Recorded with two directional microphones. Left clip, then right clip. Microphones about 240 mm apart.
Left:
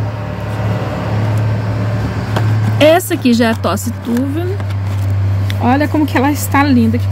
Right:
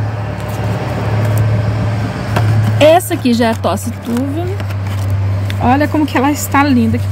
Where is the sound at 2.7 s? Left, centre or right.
Centre.